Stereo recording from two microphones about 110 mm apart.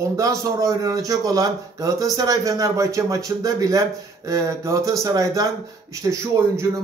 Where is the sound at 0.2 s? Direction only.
30° right (ahead or behind).